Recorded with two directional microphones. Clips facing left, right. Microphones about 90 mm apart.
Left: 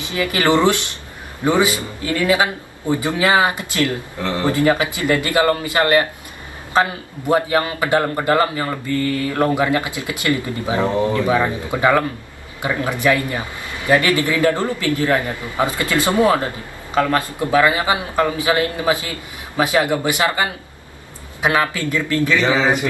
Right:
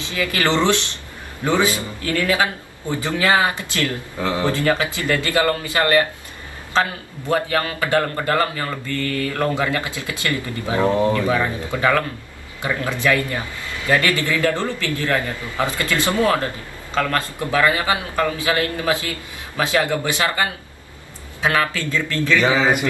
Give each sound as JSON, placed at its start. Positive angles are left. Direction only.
{"t": 0.0, "sound": "speech", "side_deg": 20}
{"t": 4.2, "sound": "speech", "side_deg": -15}
{"t": 4.5, "sound": "a man's voice", "side_deg": 15}